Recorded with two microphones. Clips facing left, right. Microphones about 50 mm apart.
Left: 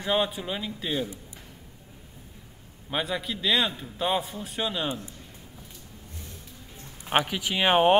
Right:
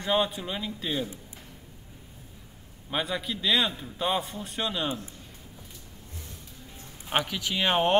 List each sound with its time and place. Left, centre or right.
0.0 s a man's voice: centre
2.9 s a man's voice: centre
7.1 s speech: centre